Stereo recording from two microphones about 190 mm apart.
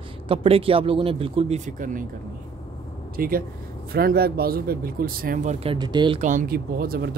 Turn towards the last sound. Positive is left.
turn(degrees=-55)  # may be behind; listen again after turning